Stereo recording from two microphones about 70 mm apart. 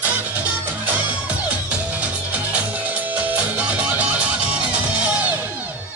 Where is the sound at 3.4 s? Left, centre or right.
Centre.